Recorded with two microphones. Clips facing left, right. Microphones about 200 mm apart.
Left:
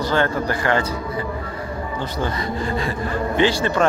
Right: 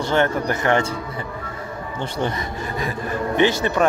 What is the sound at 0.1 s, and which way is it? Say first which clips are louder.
Speech: right 2 dB; 20° right (ahead or behind).